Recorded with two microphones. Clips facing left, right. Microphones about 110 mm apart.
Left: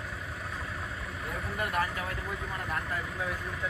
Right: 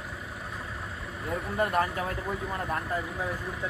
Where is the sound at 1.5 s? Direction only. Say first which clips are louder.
Right 5 dB; 30° right (ahead or behind).